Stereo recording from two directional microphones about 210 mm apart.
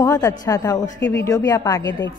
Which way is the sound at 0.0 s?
15° left (ahead or behind).